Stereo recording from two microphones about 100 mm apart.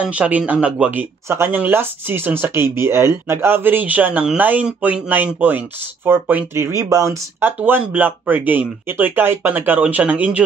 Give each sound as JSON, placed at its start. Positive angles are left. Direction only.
{"t": 0.0, "sound": "speech", "side_deg": -10}
{"t": 7.3, "sound": "speech", "side_deg": -20}